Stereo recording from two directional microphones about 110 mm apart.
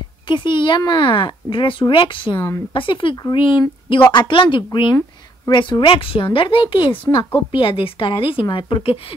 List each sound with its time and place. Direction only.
0.3 s speech: 45° left (ahead or behind)